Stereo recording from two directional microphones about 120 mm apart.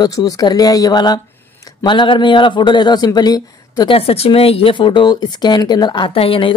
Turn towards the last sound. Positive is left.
turn(degrees=50)  # may be behind; listen again after turning